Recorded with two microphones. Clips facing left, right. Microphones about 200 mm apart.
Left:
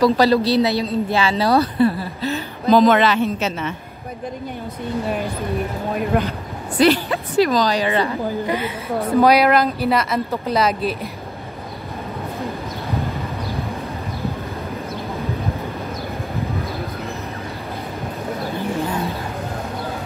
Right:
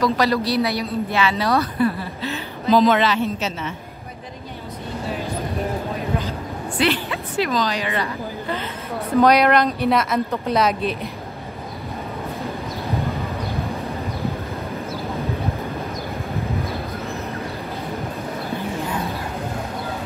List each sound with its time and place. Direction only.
0.0 s a man's voice: 30° left (ahead or behind); by 3.7 s 55° left (ahead or behind)
5.9 s a sound: 60° left (ahead or behind)
6.8 s a man's voice: 40° left (ahead or behind)
8.5 s speech: 10° left (ahead or behind)